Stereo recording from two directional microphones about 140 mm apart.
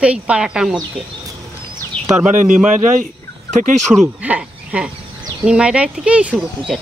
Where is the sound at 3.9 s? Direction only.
5° right (ahead or behind).